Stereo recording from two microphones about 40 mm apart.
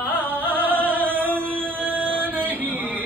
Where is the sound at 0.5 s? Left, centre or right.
Right.